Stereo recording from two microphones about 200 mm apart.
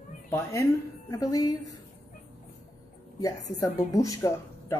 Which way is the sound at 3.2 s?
20° left (ahead or behind).